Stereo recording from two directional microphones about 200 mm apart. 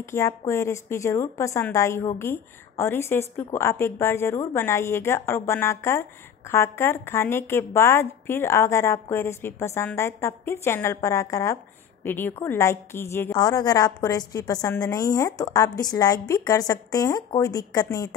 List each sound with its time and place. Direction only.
0.0 s a woman's voice: 15° left (ahead or behind)